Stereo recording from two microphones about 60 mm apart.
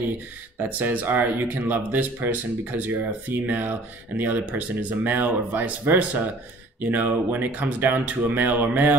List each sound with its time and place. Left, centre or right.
0.6 s speech: right